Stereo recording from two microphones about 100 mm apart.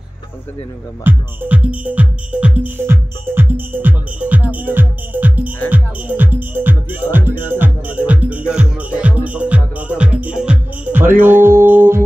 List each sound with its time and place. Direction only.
1.0 s speech: 20° right (ahead or behind)
11.0 s music: 20° right (ahead or behind)